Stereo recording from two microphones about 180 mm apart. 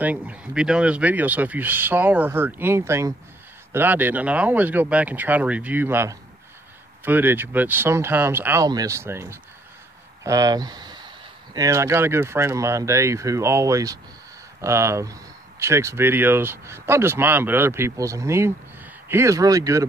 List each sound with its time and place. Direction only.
0.0 s speech: 10° right (ahead or behind)